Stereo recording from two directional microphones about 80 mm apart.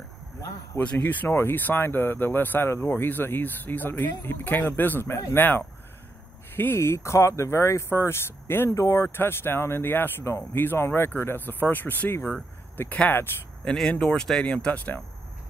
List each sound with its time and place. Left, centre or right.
0.7 s speech: left
13.7 s speech: centre